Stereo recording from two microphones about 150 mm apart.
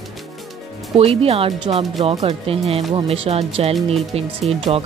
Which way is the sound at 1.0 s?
40° right (ahead or behind).